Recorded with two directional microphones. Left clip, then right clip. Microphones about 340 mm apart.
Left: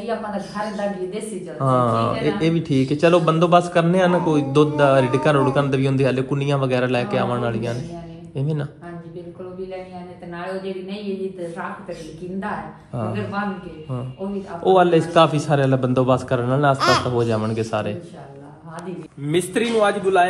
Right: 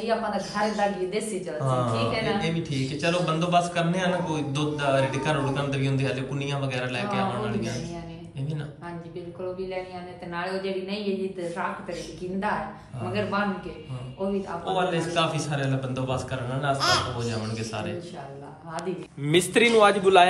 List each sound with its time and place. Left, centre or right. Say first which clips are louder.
0.0 s a woman's voice: even; centre
10.3 s a woman's voice: left 1 dB; centre
14.7 s a woman's voice: left 12 dB; centre
16.7 s a man's voice: left 2 dB; centre
17.3 s a woman's voice: left 10 dB; centre
19.2 s a woman's voice: right 1 dB; centre